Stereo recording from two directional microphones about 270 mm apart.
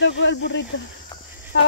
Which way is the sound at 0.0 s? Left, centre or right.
Left.